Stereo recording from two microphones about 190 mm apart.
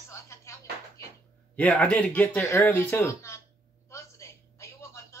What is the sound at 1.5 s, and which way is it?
Speech, 5° left (ahead or behind).